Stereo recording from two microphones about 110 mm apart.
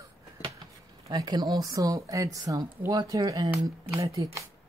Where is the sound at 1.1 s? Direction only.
40° right (ahead or behind).